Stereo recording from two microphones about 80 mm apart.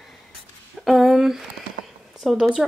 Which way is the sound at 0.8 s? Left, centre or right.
Centre.